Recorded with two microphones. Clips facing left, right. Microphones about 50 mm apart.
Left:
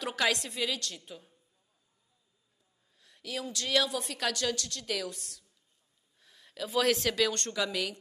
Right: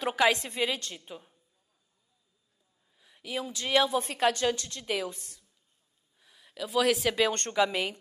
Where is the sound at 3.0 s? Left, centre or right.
Centre.